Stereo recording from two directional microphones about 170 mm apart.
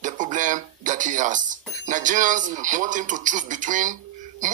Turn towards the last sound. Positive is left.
turn(degrees=-50)  # may be behind; listen again after turning